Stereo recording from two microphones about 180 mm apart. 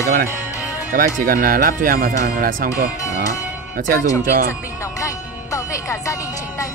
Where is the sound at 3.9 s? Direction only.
20° left (ahead or behind).